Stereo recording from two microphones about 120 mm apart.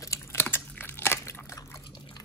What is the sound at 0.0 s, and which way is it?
Chewing, 25° left (ahead or behind).